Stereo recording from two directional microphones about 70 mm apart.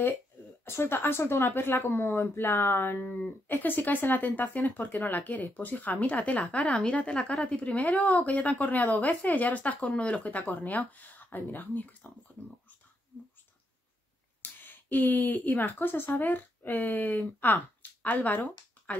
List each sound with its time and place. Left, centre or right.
0.7 s a woman's voice: left
14.4 s speech: left